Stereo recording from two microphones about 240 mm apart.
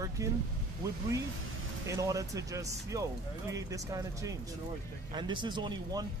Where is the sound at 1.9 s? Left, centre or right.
Centre.